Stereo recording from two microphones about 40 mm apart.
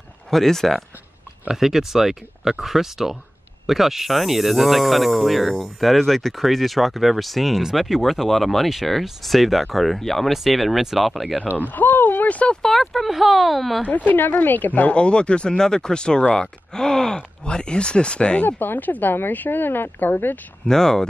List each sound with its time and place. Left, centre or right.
0.3 s speech: centre
1.5 s speech: centre
11.5 s a sound: left
12.6 s speech: centre
13.8 s a woman's voice: left
15.0 s speech: left
18.6 s a woman's voice: left
20.6 s speech: centre